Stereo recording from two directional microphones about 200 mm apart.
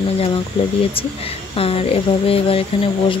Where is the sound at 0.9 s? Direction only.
30° left (ahead or behind).